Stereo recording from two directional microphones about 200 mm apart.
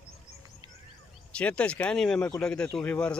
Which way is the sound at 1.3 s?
5° left (ahead or behind).